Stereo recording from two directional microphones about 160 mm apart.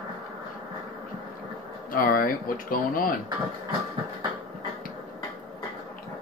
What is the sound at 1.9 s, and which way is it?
Speech, 60° left (ahead or behind).